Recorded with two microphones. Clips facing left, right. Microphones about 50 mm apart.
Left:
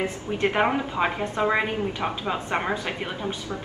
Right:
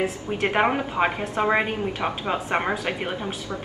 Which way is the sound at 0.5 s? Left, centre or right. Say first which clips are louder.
Right 1 dB; centre.